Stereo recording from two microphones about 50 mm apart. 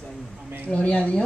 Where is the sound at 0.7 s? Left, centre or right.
Left.